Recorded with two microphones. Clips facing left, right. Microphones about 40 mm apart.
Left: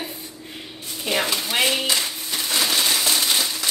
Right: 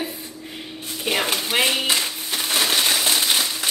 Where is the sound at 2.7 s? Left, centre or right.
Right.